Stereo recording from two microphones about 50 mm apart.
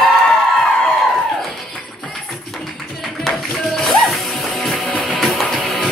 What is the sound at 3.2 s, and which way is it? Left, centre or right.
Music, centre.